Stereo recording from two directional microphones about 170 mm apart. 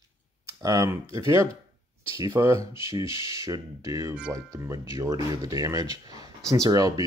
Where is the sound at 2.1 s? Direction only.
20° right (ahead or behind).